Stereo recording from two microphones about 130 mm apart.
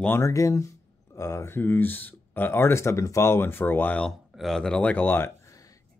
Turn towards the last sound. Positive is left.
turn(degrees=25)  # may be behind; listen again after turning